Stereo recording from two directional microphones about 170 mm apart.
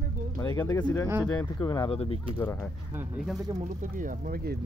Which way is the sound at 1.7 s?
30° left (ahead or behind).